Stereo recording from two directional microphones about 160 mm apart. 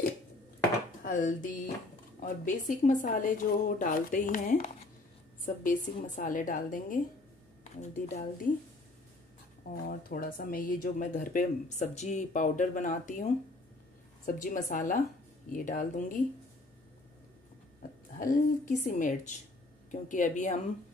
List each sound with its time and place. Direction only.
1.0 s a woman's voice: 55° left (ahead or behind)
9.8 s a woman's voice: 65° left (ahead or behind)
18.1 s speech: 55° left (ahead or behind)